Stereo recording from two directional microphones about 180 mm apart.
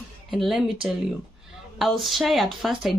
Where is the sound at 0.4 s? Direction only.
Centre (ahead or behind).